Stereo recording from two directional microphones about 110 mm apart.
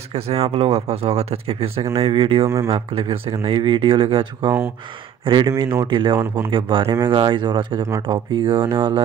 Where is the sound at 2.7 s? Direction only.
55° right (ahead or behind).